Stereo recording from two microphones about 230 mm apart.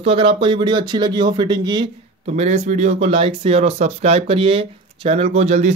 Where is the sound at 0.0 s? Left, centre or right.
Right.